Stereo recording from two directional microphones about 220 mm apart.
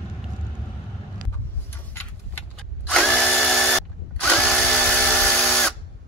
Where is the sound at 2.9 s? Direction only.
5° left (ahead or behind).